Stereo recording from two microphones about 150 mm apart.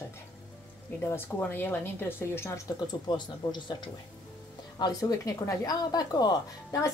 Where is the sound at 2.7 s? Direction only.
30° left (ahead or behind).